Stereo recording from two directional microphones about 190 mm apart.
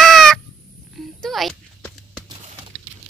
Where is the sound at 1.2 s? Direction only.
Centre (ahead or behind).